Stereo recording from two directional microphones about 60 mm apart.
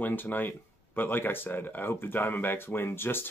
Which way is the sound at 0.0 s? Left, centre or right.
Left.